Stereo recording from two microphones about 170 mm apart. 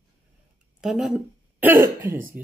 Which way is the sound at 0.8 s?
Centre (ahead or behind).